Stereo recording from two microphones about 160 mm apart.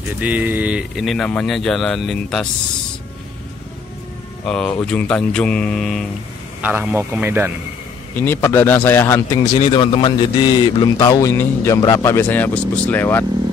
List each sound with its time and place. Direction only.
0.2 s speech: 10° right (ahead or behind)
4.5 s speech: 5° left (ahead or behind)
6.6 s a man's voice: 10° right (ahead or behind)
8.2 s a man's voice: 15° left (ahead or behind)